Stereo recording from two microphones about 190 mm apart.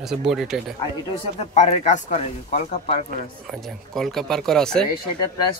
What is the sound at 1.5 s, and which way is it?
Speech, 35° left (ahead or behind).